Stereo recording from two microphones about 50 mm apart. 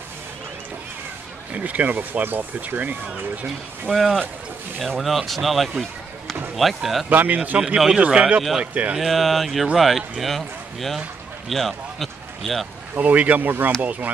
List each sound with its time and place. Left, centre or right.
1.5 s speech: right
2.2 s speech: right
3.9 s a man's voice: centre
7.1 s speech: right
7.5 s speech: centre
9.0 s speech: centre
11.4 s a sound: centre
12.9 s speech: right